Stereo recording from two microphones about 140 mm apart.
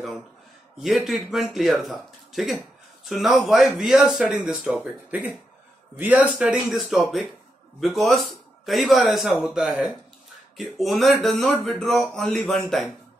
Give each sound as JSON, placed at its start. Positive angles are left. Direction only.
{"t": 0.7, "sound": "speech", "side_deg": 0}